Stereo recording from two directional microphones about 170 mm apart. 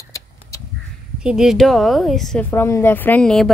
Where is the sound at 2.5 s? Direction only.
15° left (ahead or behind).